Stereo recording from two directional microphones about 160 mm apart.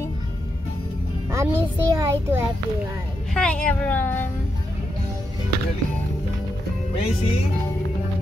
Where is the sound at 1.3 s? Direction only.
15° right (ahead or behind).